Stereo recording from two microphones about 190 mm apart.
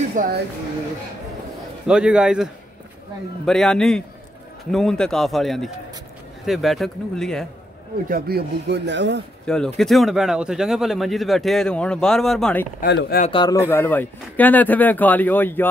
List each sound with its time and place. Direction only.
0.1 s speech: 45° right (ahead or behind)
1.9 s speech: 5° right (ahead or behind)
8.1 s speech: 55° right (ahead or behind)
9.8 s speech: centre (ahead or behind)
12.8 s speech: 60° left (ahead or behind)
13.3 s a man's voice: 25° left (ahead or behind)
13.7 s speech: 10° left (ahead or behind)